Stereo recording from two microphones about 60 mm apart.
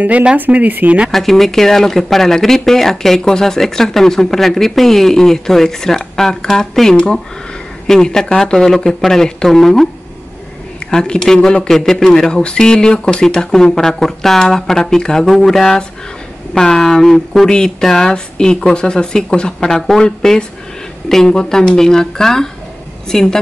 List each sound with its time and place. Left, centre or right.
0.0 s speech: right
1.1 s speech: centre
10.9 s speech: centre